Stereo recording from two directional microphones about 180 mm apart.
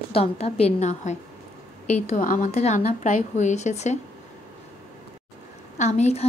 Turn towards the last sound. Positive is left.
turn(degrees=40)  # may be behind; listen again after turning